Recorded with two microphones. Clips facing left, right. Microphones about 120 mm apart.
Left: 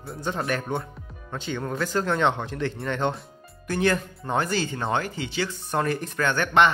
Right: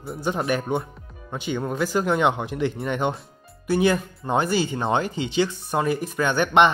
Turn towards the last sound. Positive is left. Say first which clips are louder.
# right 2 dB
turn(degrees=-15)  # may be behind; listen again after turning